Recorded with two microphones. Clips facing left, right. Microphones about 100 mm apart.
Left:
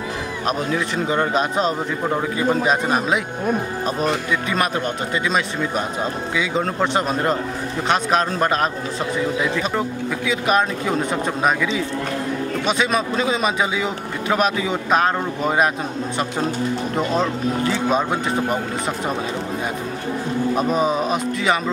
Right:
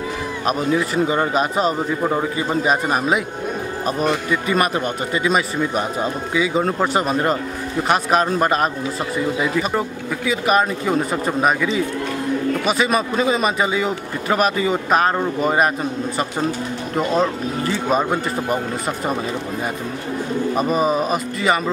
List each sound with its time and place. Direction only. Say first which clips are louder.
0.5 s a man's voice: right 3 dB; 5° right (ahead or behind)
16.9 s a man's voice: right 5 dB; centre (ahead or behind)
20.5 s a man's voice: right 2 dB; 5° right (ahead or behind)